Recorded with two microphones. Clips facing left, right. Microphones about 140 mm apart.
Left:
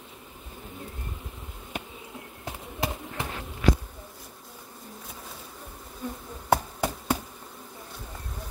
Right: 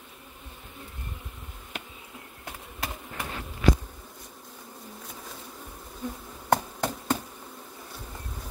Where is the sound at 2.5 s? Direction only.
25° left (ahead or behind).